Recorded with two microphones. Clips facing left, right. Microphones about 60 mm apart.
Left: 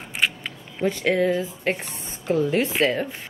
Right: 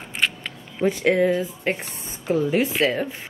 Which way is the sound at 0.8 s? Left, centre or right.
Centre.